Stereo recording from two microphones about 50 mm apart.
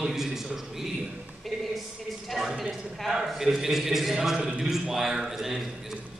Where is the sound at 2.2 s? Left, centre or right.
Centre.